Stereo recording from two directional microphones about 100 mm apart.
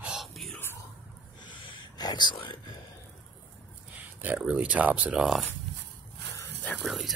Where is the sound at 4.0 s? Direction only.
15° right (ahead or behind).